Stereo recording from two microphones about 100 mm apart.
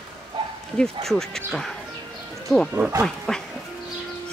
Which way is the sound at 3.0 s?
5° left (ahead or behind).